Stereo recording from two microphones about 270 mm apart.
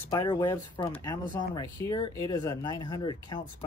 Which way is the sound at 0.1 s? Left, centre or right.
Centre.